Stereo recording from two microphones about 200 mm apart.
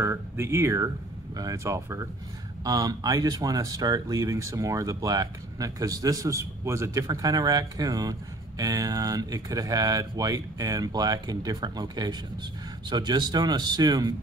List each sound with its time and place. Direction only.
0.0 s speech: 15° right (ahead or behind)